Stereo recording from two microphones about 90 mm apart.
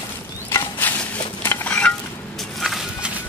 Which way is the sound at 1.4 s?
25° left (ahead or behind).